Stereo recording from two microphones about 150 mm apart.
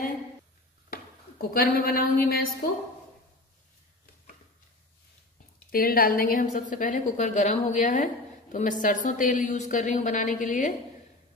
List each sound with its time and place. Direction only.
1.4 s a woman's voice: 80° left
5.7 s a woman's voice: 75° left (ahead or behind); by 10.7 s 55° left (ahead or behind)